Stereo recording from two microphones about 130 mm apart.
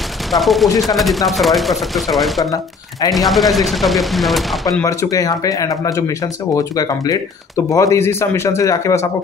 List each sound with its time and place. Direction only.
0.3 s speech: centre (ahead or behind)
4.8 s speech: 25° left (ahead or behind)